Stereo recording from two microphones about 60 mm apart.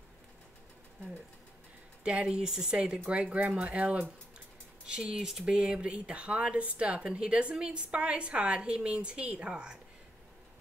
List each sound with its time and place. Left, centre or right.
2.0 s speech: centre